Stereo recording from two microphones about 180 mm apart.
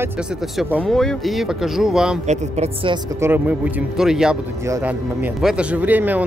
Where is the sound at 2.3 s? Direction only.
35° right (ahead or behind).